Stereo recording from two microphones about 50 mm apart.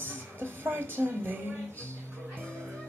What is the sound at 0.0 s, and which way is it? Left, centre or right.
Speech, right.